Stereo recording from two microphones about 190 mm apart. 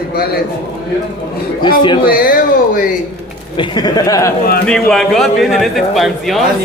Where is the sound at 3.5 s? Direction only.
20° left (ahead or behind).